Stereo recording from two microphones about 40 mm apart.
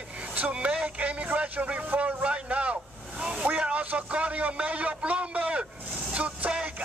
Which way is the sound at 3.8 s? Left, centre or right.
Right.